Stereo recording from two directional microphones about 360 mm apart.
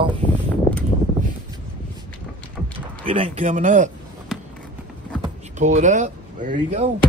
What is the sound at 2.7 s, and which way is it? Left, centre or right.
Speech, centre.